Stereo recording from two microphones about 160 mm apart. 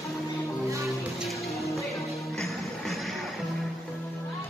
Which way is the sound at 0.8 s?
Centre (ahead or behind).